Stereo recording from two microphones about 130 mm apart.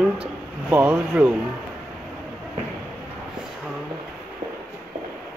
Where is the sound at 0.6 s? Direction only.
15° right (ahead or behind).